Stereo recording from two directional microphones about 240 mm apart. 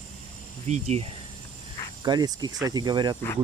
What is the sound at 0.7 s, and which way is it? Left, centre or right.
Speech, right.